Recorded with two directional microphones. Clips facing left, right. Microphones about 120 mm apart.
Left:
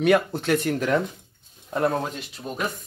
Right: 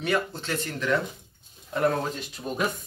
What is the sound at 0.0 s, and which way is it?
Speech, 60° left (ahead or behind).